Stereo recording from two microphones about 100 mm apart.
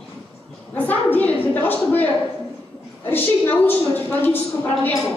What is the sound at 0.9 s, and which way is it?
A woman's voice, 15° left (ahead or behind).